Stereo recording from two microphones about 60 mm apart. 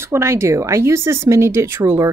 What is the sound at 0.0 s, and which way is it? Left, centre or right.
Speech, right.